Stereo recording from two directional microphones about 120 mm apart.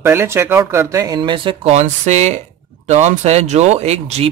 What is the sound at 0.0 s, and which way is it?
A man's voice, 20° right (ahead or behind).